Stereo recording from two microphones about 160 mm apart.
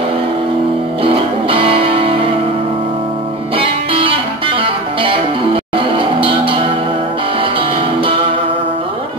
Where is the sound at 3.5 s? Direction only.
35° right (ahead or behind).